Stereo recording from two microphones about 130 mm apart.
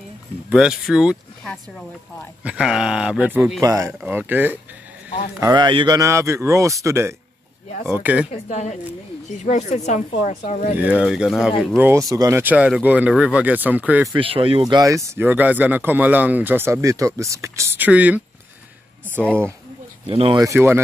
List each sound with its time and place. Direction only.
0.5 s speech: 5° right (ahead or behind)
3.6 s speech: 25° right (ahead or behind)
4.0 s speech: 15° right (ahead or behind)
5.4 s a man's voice: 30° right (ahead or behind)
5.9 s speech: 20° right (ahead or behind)
8.3 s speech: 60° left (ahead or behind)
10.8 s speech: 10° right (ahead or behind)
11.8 s speech: 25° right (ahead or behind)
14.1 s speech: 45° right (ahead or behind)
14.6 s speech: 30° right (ahead or behind)
15.2 s speech: 15° right (ahead or behind)
20.1 s speech: 45° right (ahead or behind)
20.3 s speech: 20° right (ahead or behind)